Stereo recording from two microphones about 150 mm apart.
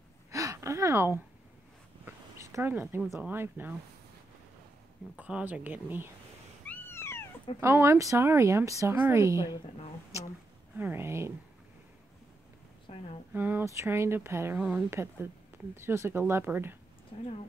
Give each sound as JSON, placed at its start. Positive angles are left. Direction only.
{"t": 0.3, "sound": "gasp", "side_deg": -20}
{"t": 2.0, "sound": "a sound", "side_deg": -15}
{"t": 3.2, "sound": "speech", "side_deg": -10}
{"t": 5.1, "sound": "speech", "side_deg": -10}
{"t": 6.6, "sound": "cat", "side_deg": 15}
{"t": 7.6, "sound": "speech", "side_deg": -15}
{"t": 10.8, "sound": "speech", "side_deg": -15}
{"t": 12.8, "sound": "speech", "side_deg": 45}
{"t": 13.3, "sound": "speech", "side_deg": -10}
{"t": 17.1, "sound": "speech", "side_deg": 35}